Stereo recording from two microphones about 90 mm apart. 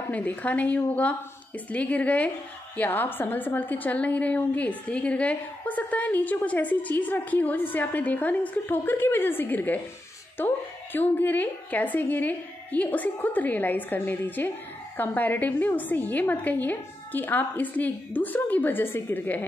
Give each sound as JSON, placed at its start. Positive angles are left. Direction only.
{"t": 0.1, "sound": "a woman's voice", "side_deg": 15}